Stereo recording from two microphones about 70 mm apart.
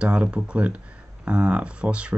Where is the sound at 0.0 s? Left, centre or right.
Centre.